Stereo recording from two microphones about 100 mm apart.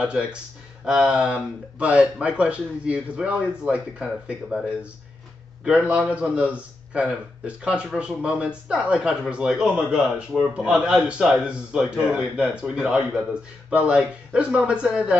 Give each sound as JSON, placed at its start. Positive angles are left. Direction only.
{"t": 0.0, "sound": "speech", "side_deg": -10}
{"t": 5.6, "sound": "speech", "side_deg": -10}